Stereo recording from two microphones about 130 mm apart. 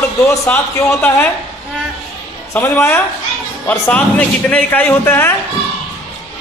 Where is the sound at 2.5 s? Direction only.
20° left (ahead or behind).